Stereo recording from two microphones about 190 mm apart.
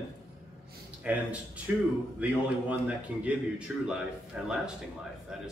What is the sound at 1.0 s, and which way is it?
Speech, 5° right (ahead or behind).